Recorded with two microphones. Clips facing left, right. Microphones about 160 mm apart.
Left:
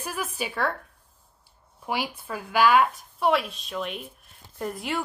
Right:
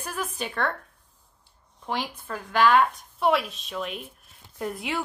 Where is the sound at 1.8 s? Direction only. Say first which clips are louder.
Left 1 dB; 10° left (ahead or behind).